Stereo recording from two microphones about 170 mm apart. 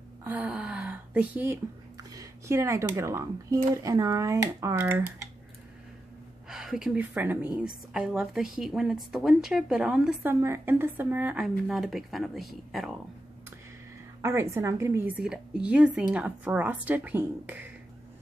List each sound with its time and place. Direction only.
0.2 s a sound: 10° right (ahead or behind)
3.7 s speech: 20° right (ahead or behind)
6.5 s a woman's voice: 5° right (ahead or behind)
14.2 s a woman's voice: 15° right (ahead or behind)